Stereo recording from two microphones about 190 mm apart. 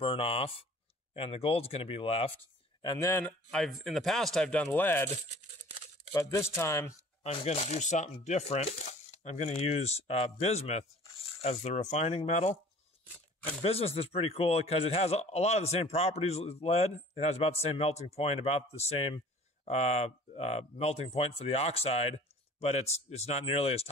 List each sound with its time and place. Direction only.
0.0 s speech: 30° left (ahead or behind)
3.1 s speech: 10° left (ahead or behind)
6.1 s speech: 15° left (ahead or behind)
7.2 s speech: 30° left (ahead or behind)
13.6 s speech: 30° left (ahead or behind)